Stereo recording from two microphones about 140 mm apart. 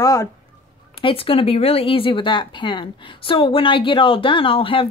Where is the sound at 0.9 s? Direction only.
40° left (ahead or behind).